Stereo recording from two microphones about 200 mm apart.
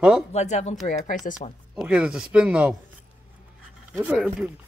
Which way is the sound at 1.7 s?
5° right (ahead or behind).